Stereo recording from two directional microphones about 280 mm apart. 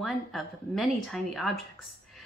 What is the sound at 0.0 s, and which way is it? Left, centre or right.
A woman's voice, centre.